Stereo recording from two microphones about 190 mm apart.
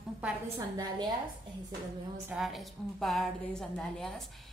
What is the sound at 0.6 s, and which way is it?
Speech, 20° right (ahead or behind).